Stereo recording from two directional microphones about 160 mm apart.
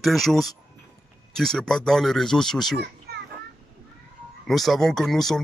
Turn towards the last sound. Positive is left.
turn(degrees=0)  # may be behind; listen again after turning